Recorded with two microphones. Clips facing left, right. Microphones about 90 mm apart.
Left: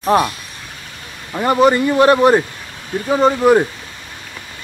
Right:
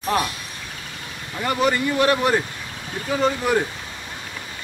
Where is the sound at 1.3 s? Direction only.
30° left (ahead or behind).